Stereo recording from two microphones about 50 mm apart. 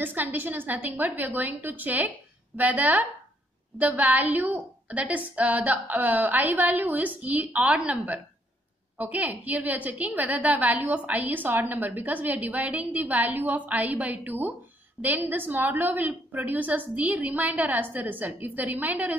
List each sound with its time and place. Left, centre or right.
0.0 s a woman's voice: right
4.9 s a woman's voice: right
8.9 s a woman's voice: right